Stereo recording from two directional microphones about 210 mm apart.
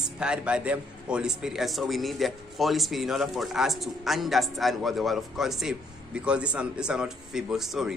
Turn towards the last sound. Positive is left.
turn(degrees=0)  # may be behind; listen again after turning